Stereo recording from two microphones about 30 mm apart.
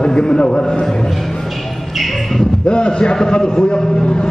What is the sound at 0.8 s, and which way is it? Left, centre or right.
Speech, centre.